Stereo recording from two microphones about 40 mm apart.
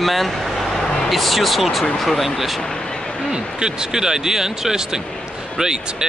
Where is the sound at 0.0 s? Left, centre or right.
Centre.